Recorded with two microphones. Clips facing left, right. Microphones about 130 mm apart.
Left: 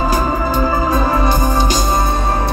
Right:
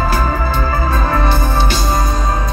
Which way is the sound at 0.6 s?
15° left (ahead or behind).